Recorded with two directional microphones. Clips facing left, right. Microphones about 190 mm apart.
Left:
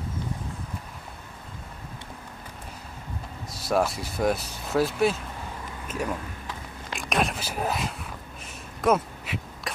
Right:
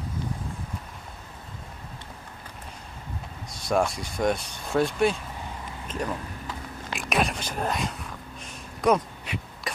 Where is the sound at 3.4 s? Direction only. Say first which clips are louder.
Even; 5° left (ahead or behind).